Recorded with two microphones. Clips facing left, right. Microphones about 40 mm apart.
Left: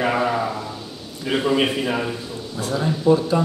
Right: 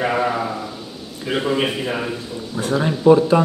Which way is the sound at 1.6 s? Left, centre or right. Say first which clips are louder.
Left 1 dB; centre.